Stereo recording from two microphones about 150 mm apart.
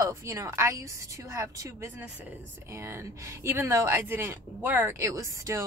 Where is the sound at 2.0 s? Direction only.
10° right (ahead or behind).